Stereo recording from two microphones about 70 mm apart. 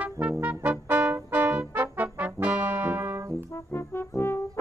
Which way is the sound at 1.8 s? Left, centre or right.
Right.